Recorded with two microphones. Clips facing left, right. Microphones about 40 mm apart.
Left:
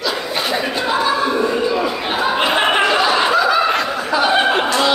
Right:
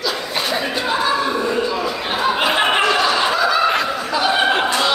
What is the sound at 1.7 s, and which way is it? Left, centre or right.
Chatter, centre.